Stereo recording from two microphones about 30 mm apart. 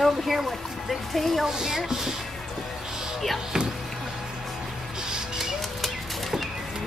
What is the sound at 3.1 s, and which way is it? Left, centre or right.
Speech, centre.